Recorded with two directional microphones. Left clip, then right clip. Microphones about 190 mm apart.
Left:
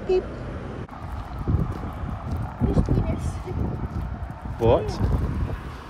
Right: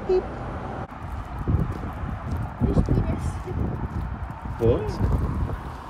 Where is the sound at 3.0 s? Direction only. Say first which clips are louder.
Even; 5° left (ahead or behind).